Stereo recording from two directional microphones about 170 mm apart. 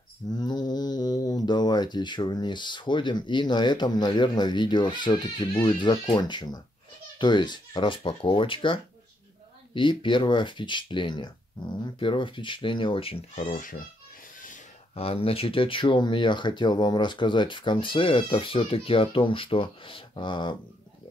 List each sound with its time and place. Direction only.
0.3 s speech: 25° left (ahead or behind); by 13.7 s 50° left (ahead or behind)
15.0 s speech: 35° left (ahead or behind)